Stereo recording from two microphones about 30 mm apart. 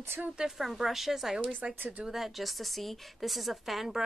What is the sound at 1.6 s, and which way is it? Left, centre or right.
Speech, right.